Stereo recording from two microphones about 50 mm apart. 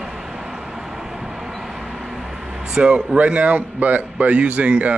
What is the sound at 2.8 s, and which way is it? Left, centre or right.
Speech, right.